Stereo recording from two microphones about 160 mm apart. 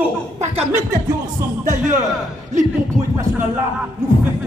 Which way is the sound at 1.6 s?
55° right (ahead or behind).